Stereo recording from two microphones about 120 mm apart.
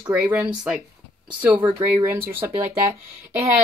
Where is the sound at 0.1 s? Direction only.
10° right (ahead or behind).